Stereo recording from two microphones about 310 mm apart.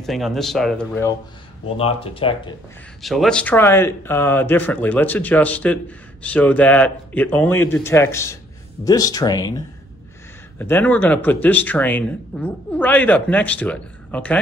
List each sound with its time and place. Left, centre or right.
0.0 s speech: centre
1.8 s speech: centre
3.0 s speech: centre
10.6 s speech: centre